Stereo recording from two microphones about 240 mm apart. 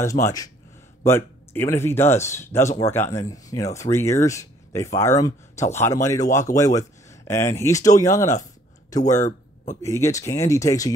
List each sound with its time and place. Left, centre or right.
0.0 s speech: centre